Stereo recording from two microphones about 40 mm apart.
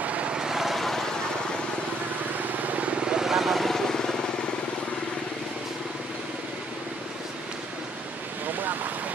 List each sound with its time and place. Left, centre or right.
0.0 s vehicle: right
0.3 s vehicle: centre
0.7 s vehicle: centre
2.6 s vehicle: right
3.1 s vehicle: centre
8.5 s ocean: right